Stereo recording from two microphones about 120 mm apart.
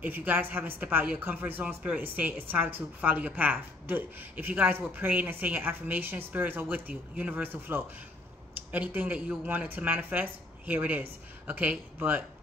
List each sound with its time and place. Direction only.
0.0 s a woman's voice: 15° right (ahead or behind)